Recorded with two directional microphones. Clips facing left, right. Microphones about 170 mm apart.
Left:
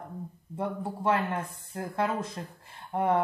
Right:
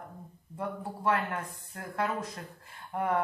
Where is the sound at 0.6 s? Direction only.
25° left (ahead or behind).